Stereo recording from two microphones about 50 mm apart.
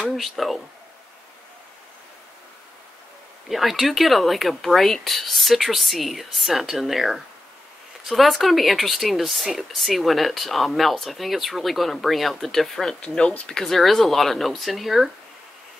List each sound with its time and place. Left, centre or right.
0.1 s speech: centre
3.4 s speech: centre
13.0 s speech: centre